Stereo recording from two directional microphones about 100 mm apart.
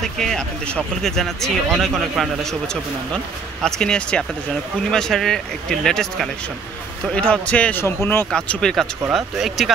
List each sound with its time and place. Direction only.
0.0 s speech: 5° left (ahead or behind)
7.8 s speech: 25° left (ahead or behind)
8.3 s speech: 10° left (ahead or behind)